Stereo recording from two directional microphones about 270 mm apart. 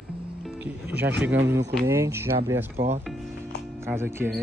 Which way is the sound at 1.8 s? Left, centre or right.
Centre.